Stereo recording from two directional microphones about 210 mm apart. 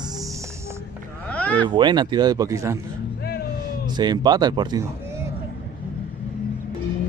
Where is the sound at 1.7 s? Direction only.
20° right (ahead or behind).